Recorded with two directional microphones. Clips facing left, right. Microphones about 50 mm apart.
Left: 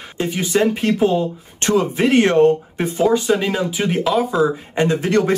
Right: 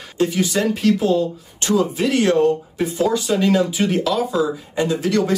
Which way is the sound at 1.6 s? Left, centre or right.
Left.